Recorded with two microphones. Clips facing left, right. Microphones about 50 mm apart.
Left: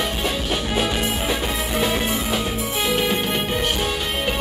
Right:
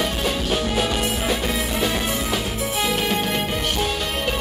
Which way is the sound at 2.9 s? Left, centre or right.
Left.